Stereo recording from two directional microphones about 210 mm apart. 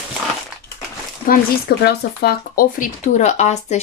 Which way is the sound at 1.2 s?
45° left (ahead or behind).